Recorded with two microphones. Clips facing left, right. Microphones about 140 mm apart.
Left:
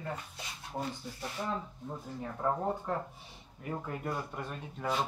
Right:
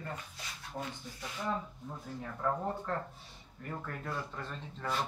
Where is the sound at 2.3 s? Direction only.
20° left (ahead or behind).